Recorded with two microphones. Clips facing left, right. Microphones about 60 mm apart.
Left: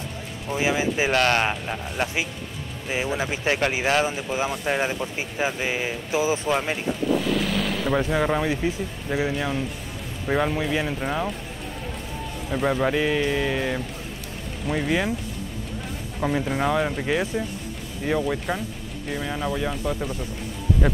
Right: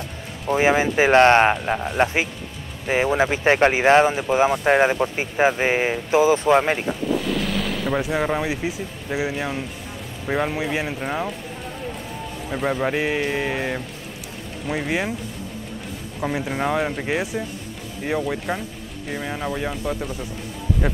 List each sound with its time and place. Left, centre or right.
0.5 s speech: right
7.2 s speech: centre
12.4 s speech: centre
12.9 s music: right
14.9 s music: centre
16.2 s speech: centre
19.7 s speech: centre